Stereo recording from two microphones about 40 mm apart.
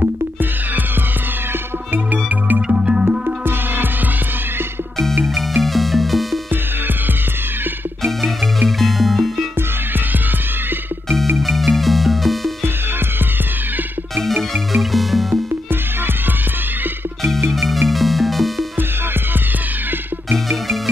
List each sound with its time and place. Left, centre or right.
2.2 s music: right
2.7 s music: right
3.4 s music: right
5.2 s music: centre
8.6 s music: centre
11.3 s music: centre
14.5 s music: centre
17.5 s music: centre
20.4 s music: centre